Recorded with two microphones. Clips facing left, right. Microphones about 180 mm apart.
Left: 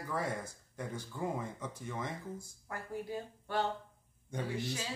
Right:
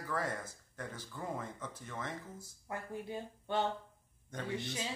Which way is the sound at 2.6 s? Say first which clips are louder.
Even; 20° right (ahead or behind).